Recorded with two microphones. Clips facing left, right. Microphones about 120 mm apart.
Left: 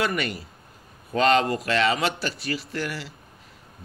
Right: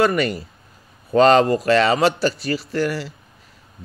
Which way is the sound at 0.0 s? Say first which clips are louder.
Right 8 dB; 35° right (ahead or behind).